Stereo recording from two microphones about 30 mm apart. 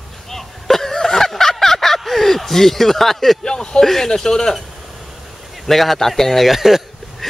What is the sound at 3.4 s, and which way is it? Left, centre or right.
A man's voice, left.